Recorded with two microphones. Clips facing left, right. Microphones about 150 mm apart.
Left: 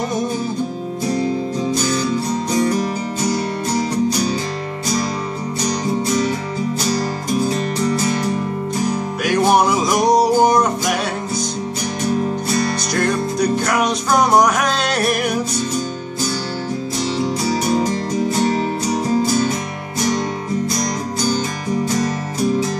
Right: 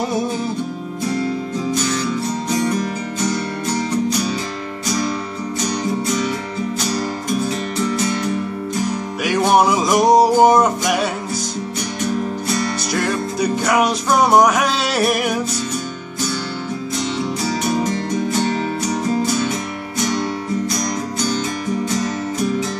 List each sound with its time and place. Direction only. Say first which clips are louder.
7.4 s music: left 2 dB; 35° left (ahead or behind)
9.2 s music: even; centre (ahead or behind)
12.9 s music: left 2 dB; 5° right (ahead or behind)
17.5 s music: left 1 dB; 35° left (ahead or behind)
20.1 s music: left 2 dB; 40° left (ahead or behind)